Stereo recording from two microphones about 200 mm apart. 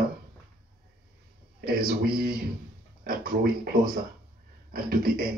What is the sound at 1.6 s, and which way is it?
Speech, 50° right (ahead or behind).